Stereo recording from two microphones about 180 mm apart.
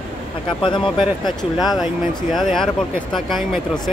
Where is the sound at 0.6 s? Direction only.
25° left (ahead or behind).